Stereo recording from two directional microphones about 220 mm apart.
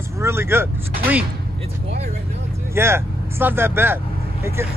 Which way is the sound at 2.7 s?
10° right (ahead or behind).